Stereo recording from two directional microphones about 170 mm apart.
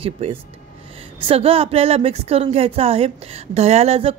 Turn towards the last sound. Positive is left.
turn(degrees=-35)  # may be behind; listen again after turning